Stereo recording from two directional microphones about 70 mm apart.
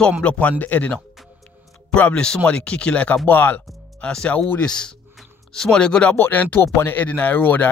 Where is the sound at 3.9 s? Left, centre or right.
Centre.